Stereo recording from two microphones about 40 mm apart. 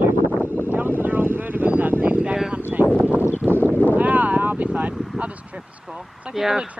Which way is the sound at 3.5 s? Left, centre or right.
Left.